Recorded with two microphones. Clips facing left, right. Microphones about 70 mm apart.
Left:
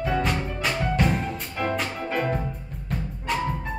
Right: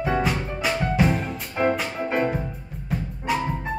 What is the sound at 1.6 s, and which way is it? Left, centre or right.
Music, right.